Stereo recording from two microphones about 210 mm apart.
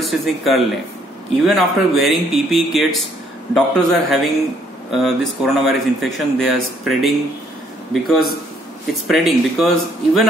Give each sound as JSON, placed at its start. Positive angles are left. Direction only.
{"t": 0.0, "sound": "speech", "side_deg": 0}